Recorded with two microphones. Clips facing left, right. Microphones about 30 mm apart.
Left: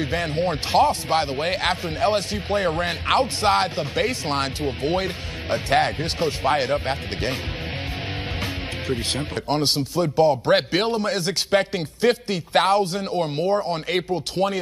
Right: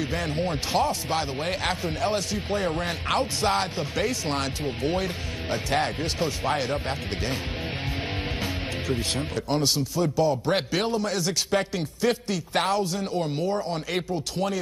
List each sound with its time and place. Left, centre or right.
0.0 s a man's voice: left
8.8 s a man's voice: left